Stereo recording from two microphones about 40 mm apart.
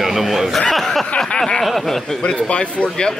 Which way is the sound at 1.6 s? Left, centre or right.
Centre.